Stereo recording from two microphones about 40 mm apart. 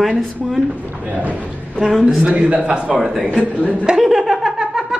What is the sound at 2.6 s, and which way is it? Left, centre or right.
A man's voice, right.